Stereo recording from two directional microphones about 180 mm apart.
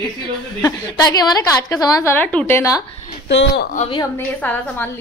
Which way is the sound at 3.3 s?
75° left (ahead or behind).